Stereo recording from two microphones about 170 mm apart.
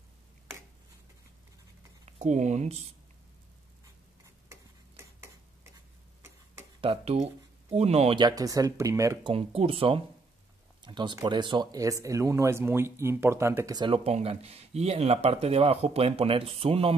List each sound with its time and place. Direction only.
2.0 s speech: 45° right (ahead or behind)
6.8 s speech: 35° right (ahead or behind)
8.2 s speech: 20° right (ahead or behind)
9.3 s speech: 35° right (ahead or behind)